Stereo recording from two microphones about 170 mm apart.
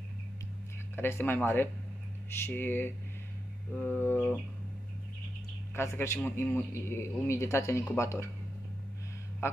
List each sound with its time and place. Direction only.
0.9 s a man's voice: 15° left (ahead or behind)
5.8 s a man's voice: 15° left (ahead or behind)
9.4 s speech: 15° left (ahead or behind)